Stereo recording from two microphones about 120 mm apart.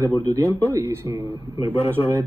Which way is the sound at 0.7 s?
25° right (ahead or behind).